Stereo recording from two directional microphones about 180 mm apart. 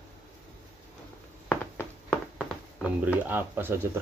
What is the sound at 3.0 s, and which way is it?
Speech, 10° right (ahead or behind).